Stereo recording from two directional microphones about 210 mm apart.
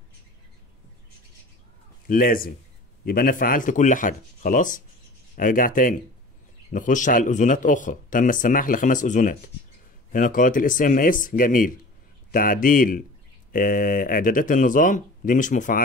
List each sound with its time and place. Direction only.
2.0 s speech: 45° left (ahead or behind)